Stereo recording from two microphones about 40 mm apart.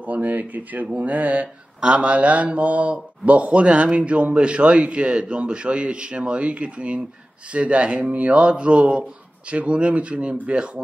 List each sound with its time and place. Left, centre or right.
0.0 s speech: right
1.8 s speech: right